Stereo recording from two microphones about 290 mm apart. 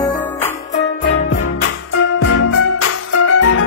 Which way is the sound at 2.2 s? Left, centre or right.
Left.